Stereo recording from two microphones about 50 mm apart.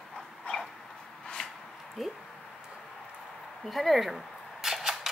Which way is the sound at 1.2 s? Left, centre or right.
Centre.